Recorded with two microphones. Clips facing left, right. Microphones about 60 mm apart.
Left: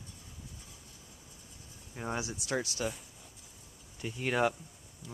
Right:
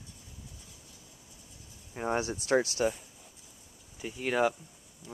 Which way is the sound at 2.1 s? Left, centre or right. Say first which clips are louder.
Right 7 dB; right.